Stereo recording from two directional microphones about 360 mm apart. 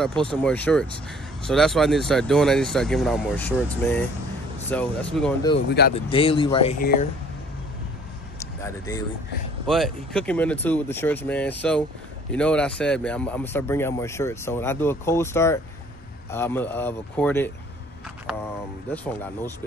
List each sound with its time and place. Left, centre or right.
0.0 s speech: centre
5.7 s speech: left
5.9 s speech: centre
8.4 s a sound: centre
9.7 s speech: centre